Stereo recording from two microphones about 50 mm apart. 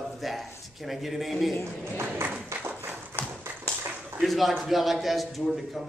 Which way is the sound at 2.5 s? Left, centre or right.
Right.